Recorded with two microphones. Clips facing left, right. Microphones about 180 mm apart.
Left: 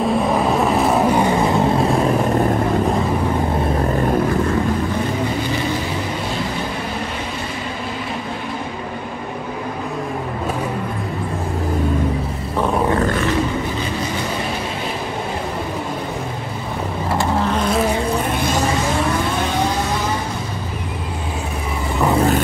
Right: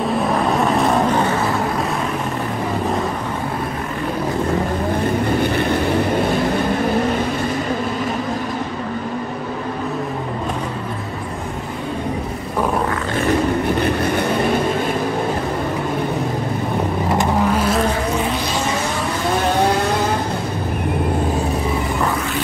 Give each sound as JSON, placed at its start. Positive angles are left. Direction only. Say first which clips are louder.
{"t": 0.0, "sound": "vehicle", "louder": "left 1 dB", "side_deg": 0}
{"t": 17.2, "sound": "vehicle", "louder": "even", "side_deg": -10}
{"t": 22.1, "sound": "vehicle", "louder": "left 7 dB", "side_deg": 35}